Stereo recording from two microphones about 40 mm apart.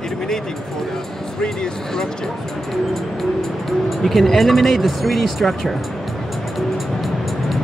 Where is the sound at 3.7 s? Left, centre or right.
Centre.